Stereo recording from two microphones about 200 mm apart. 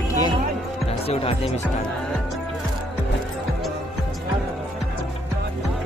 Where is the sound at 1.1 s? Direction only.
30° left (ahead or behind).